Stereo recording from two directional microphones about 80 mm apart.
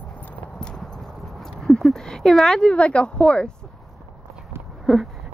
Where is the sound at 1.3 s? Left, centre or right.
Centre.